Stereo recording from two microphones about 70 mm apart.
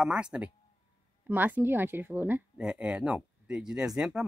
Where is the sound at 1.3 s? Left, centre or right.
Right.